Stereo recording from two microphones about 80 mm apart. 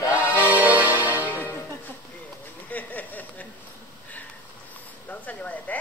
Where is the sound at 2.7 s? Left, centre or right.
Left.